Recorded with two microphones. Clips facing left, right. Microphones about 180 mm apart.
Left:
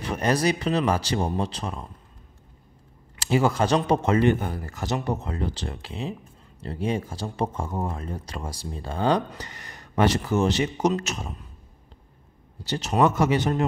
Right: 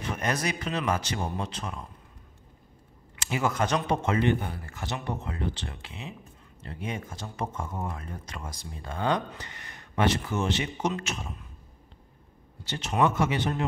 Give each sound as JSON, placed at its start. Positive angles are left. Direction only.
{"t": 0.1, "sound": "speech", "side_deg": 35}
{"t": 3.2, "sound": "speech", "side_deg": 35}
{"t": 12.6, "sound": "speech", "side_deg": 35}